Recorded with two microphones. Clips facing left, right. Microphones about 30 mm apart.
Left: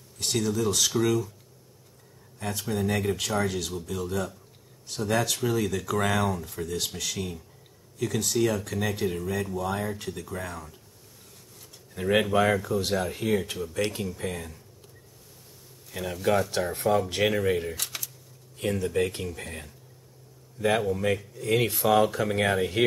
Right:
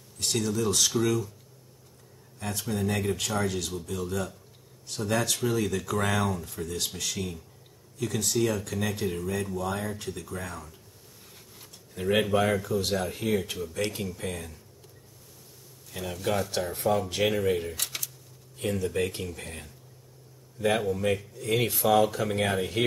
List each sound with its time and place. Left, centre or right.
0.2 s speech: centre
2.3 s speech: centre
11.9 s speech: centre
15.9 s speech: centre